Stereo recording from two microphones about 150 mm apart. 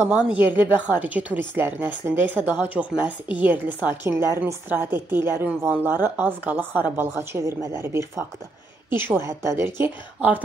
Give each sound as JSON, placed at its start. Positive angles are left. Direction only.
{"t": 0.0, "sound": "speech", "side_deg": -5}